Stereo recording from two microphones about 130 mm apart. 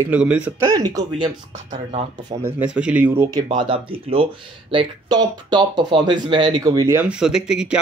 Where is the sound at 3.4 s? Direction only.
40° right (ahead or behind).